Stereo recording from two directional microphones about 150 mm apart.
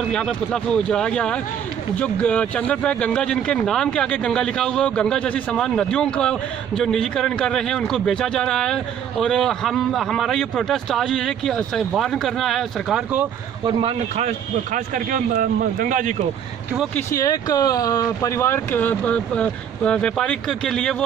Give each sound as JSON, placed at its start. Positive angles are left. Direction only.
{"t": 0.1, "sound": "speech", "side_deg": 5}
{"t": 13.7, "sound": "speech", "side_deg": -35}
{"t": 16.9, "sound": "speech", "side_deg": 20}